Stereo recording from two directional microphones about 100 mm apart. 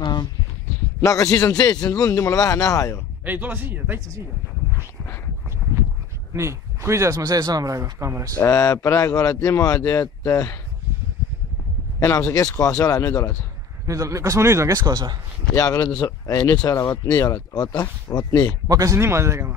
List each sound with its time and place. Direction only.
0.0 s a sound: 45° left (ahead or behind)
1.0 s speech: 35° left (ahead or behind)
3.3 s speech: 15° right (ahead or behind)
6.3 s speech: 30° right (ahead or behind)
8.4 s speech: 30° left (ahead or behind)
12.0 s speech: 35° left (ahead or behind)
13.8 s speech: 30° right (ahead or behind)
14.8 s speech: 40° right (ahead or behind)
15.5 s speech: 35° left (ahead or behind)
18.7 s speech: 35° right (ahead or behind)